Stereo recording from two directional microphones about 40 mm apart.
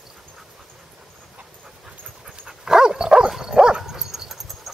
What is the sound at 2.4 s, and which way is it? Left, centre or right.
Dog, centre.